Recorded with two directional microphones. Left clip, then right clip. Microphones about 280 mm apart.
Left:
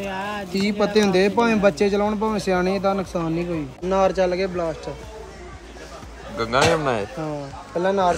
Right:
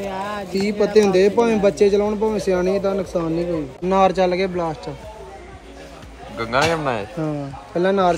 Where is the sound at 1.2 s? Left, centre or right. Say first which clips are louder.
Right 2 dB; centre.